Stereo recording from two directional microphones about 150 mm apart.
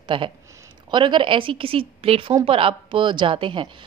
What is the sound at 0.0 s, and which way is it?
A woman's voice, 35° right (ahead or behind).